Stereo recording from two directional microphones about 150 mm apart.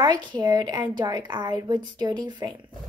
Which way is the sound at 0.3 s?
25° right (ahead or behind).